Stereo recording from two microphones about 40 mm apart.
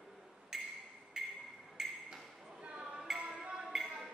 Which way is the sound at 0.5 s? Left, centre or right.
Centre.